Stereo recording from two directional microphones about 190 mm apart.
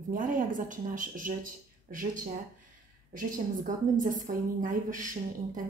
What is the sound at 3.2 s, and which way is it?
A woman's voice, 45° right (ahead or behind).